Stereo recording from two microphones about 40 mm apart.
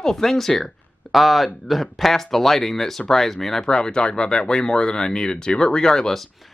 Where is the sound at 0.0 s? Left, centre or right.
Centre.